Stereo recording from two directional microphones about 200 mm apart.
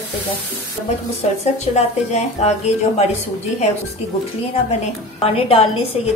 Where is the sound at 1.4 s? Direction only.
35° left (ahead or behind).